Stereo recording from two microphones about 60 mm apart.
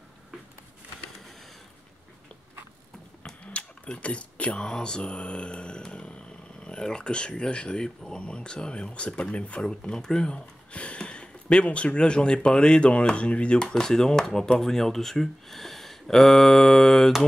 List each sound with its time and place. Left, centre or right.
3.4 s speech: left; by 17.2 s centre